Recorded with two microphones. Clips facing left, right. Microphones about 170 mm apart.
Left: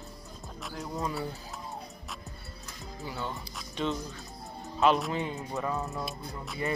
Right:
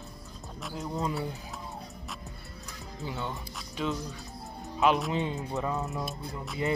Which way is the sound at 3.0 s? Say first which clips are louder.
Right 1 dB; 20° right (ahead or behind).